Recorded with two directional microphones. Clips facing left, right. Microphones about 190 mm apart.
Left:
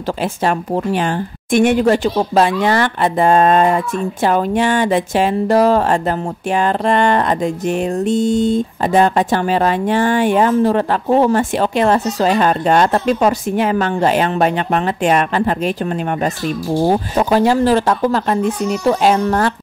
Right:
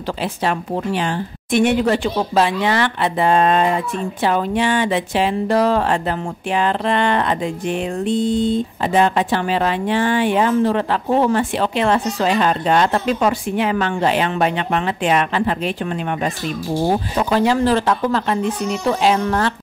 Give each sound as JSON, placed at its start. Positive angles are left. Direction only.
{"t": 0.2, "sound": "a woman's voice", "side_deg": 45}